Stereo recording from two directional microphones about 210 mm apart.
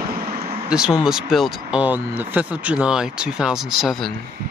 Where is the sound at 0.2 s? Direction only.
45° right (ahead or behind).